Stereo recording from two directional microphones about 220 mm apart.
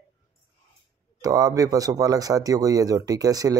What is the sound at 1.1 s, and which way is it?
A man's voice, 15° right (ahead or behind).